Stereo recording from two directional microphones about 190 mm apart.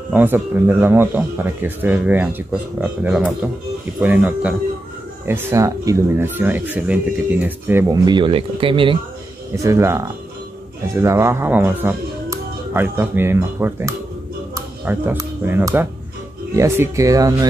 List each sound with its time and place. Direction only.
0.1 s speech: 10° right (ahead or behind); by 8.9 s 25° right (ahead or behind)
9.6 s speech: 15° right (ahead or behind)